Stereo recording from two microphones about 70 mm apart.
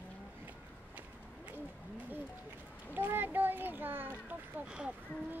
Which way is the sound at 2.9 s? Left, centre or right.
Right.